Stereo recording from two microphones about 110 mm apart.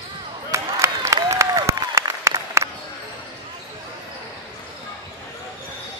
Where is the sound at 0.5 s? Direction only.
25° right (ahead or behind).